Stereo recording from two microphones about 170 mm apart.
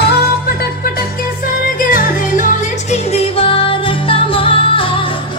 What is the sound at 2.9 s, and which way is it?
Music, 35° left (ahead or behind).